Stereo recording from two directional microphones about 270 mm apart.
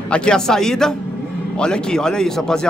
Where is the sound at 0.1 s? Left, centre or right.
Centre.